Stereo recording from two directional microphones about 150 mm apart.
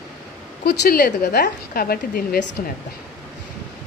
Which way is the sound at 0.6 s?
90° left.